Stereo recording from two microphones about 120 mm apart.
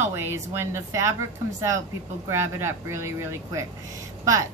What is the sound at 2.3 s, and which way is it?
A woman's voice, 20° right (ahead or behind).